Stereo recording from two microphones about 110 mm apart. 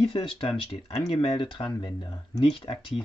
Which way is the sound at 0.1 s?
55° left (ahead or behind).